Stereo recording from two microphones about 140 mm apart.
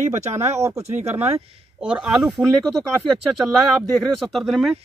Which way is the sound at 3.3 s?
Centre (ahead or behind).